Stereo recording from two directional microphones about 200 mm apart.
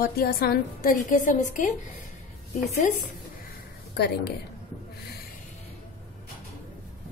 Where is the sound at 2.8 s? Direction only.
40° left (ahead or behind).